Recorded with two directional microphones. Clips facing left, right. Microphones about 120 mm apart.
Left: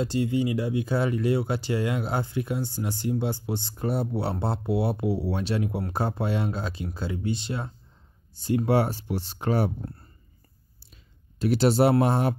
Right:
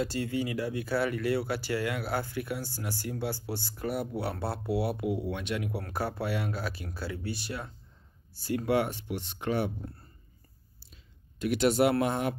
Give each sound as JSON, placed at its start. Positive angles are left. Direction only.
{"t": 0.0, "sound": "speech", "side_deg": 20}
{"t": 11.3, "sound": "speech", "side_deg": 35}